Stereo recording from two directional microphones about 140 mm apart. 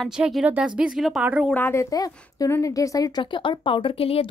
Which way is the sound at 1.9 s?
25° left (ahead or behind).